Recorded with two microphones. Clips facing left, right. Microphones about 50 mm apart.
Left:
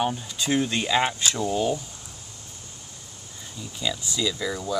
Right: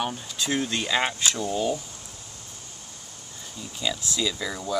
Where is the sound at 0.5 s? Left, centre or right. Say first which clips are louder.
Left 3 dB; centre.